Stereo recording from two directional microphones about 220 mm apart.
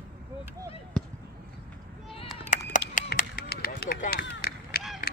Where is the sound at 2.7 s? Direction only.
35° left (ahead or behind).